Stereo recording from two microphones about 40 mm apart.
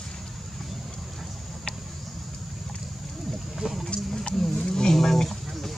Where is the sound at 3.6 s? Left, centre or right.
Right.